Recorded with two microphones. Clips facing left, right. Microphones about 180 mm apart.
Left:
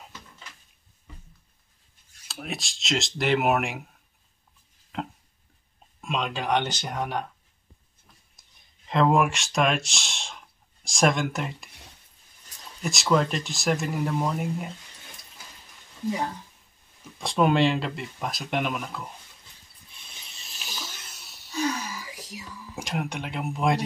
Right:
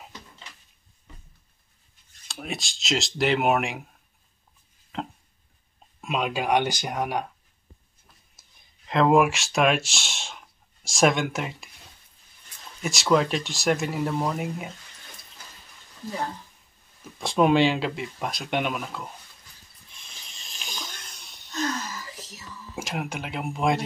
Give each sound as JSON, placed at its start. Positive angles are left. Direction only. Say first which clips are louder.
{"t": 2.2, "sound": "speech", "louder": "right 1 dB", "side_deg": 0}
{"t": 4.9, "sound": "a sound", "louder": "even", "side_deg": 0}
{"t": 5.9, "sound": "speech", "louder": "right 2 dB", "side_deg": -5}
{"t": 8.4, "sound": "speech", "louder": "right 1 dB", "side_deg": 0}
{"t": 12.5, "sound": "a sound", "louder": "even", "side_deg": 40}
{"t": 12.8, "sound": "speech", "louder": "right 1 dB", "side_deg": 0}
{"t": 17.2, "sound": "speech", "louder": "right 2 dB", "side_deg": 0}
{"t": 19.9, "sound": "wheeze", "louder": "even", "side_deg": 5}
{"t": 22.8, "sound": "speech", "louder": "even", "side_deg": 0}